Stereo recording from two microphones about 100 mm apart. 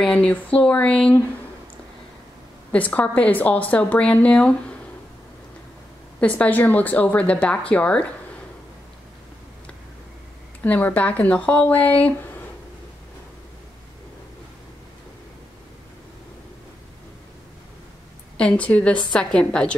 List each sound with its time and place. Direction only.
0.0 s speech: 10° left (ahead or behind)
2.7 s speech: 15° left (ahead or behind)
6.1 s speech: 15° left (ahead or behind)
10.6 s speech: 15° left (ahead or behind)
18.4 s speech: 15° left (ahead or behind)